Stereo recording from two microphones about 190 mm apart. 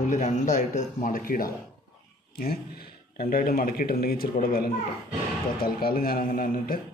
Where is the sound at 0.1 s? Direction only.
40° left (ahead or behind).